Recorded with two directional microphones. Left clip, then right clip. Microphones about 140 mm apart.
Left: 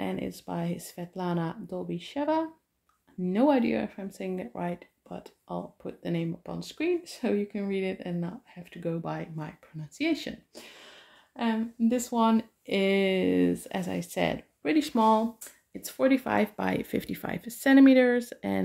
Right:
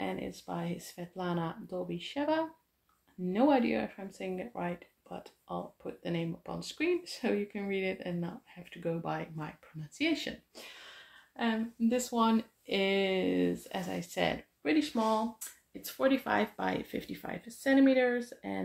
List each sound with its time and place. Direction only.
0.0 s speech: 40° left (ahead or behind); by 10.3 s 25° left (ahead or behind)
11.3 s speech: 45° left (ahead or behind)
14.6 s speech: 75° left (ahead or behind)
15.8 s speech: 45° left (ahead or behind); by 18.6 s 75° left (ahead or behind)